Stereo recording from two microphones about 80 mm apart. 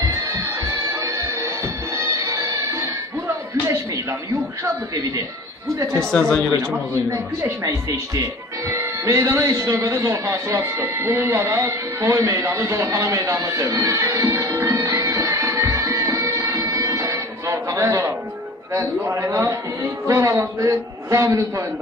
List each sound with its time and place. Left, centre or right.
2.2 s music: right
6.1 s speech: centre
7.1 s a man's voice: right
15.5 s music: right
19.1 s a man's voice: right